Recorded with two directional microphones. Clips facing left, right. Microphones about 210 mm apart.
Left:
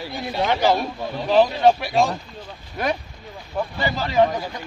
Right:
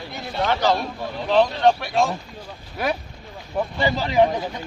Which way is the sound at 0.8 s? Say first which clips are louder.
Left 2 dB; 5° left (ahead or behind).